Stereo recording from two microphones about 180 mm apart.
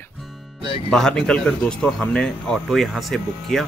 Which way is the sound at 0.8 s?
5° left (ahead or behind).